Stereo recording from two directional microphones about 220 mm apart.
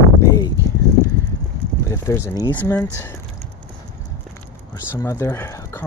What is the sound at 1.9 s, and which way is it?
Speech, 10° left (ahead or behind).